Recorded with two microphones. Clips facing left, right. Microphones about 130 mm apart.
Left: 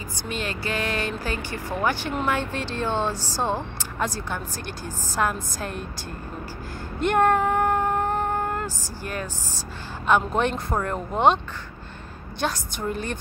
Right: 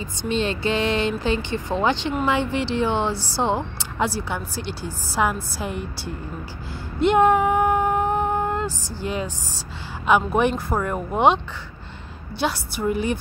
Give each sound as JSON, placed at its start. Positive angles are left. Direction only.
{"t": 0.2, "sound": "a woman's voice", "side_deg": -25}
{"t": 7.0, "sound": "a sound", "side_deg": -15}
{"t": 9.0, "sound": "a woman's voice", "side_deg": -15}
{"t": 12.4, "sound": "a woman's voice", "side_deg": -10}